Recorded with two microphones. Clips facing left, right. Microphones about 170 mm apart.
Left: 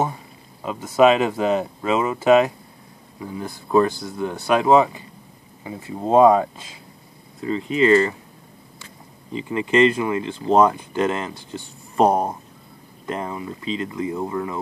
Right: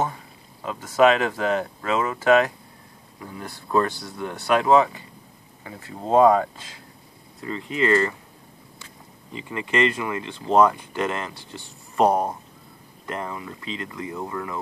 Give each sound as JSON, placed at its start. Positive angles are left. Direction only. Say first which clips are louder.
{"t": 0.7, "sound": "speech", "louder": "left 2 dB", "side_deg": 20}
{"t": 9.3, "sound": "speech", "louder": "left 6 dB", "side_deg": 25}
{"t": 12.1, "sound": "speech", "louder": "left 2 dB", "side_deg": 10}
{"t": 13.0, "sound": "speech", "louder": "left 4 dB", "side_deg": 20}